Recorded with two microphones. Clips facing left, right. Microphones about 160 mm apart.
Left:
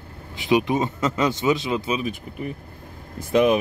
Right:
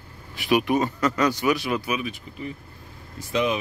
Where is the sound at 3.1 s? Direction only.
50° left (ahead or behind).